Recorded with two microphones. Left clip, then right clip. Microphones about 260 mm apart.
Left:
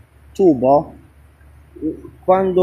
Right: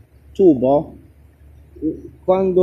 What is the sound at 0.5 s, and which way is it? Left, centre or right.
Speech, left.